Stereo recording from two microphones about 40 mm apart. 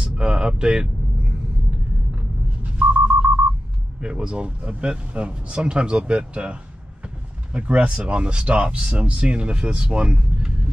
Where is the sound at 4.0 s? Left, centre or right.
Right.